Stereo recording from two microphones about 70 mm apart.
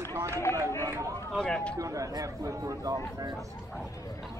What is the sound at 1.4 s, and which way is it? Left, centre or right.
Speech, centre.